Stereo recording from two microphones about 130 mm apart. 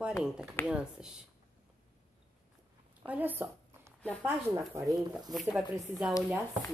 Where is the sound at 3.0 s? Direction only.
15° right (ahead or behind).